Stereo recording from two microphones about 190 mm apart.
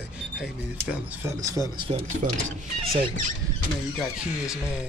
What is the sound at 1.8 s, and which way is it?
Speech, 30° right (ahead or behind).